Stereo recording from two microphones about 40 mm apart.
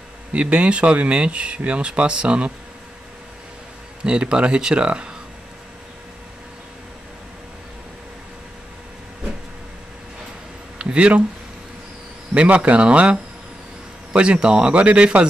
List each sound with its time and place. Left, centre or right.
0.3 s speech: right
4.0 s speech: right
10.8 s speech: right
12.4 s speech: right